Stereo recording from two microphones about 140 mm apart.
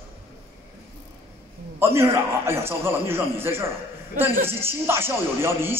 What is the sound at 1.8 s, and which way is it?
A man's voice, 20° right (ahead or behind).